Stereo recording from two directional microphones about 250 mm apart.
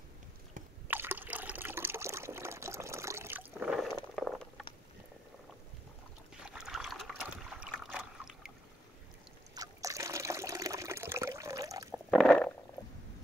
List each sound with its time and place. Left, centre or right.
0.8 s liquid: centre
4.1 s a sound: centre
6.4 s boat: centre
9.6 s water: centre
12.1 s stomach rumble: centre
12.8 s stomach rumble: centre